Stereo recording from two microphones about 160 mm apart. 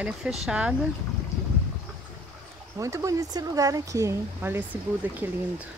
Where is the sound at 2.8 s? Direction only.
20° right (ahead or behind).